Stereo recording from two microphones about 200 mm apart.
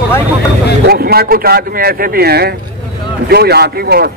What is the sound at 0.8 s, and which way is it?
Speech, 50° right (ahead or behind).